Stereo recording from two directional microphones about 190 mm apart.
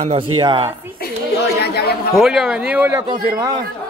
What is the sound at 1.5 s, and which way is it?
Speech, 55° left (ahead or behind).